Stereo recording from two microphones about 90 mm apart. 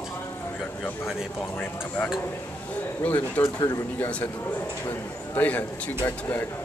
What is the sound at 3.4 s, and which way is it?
Speech, 45° left (ahead or behind).